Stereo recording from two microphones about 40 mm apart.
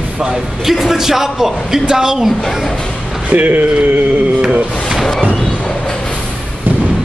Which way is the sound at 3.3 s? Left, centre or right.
Right.